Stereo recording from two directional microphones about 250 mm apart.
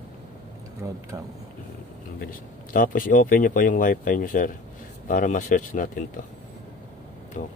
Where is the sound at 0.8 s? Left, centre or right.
Centre.